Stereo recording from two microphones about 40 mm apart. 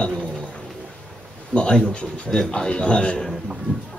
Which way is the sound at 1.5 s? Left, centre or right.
Left.